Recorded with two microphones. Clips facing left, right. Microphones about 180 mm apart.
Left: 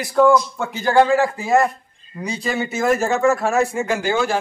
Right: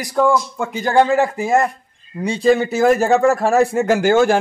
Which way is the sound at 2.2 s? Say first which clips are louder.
Right 9 dB; 30° right (ahead or behind).